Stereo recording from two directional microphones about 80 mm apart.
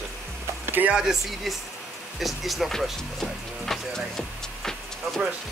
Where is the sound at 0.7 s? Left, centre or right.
Right.